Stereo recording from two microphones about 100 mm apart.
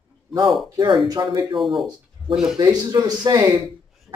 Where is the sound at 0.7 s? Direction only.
50° right (ahead or behind).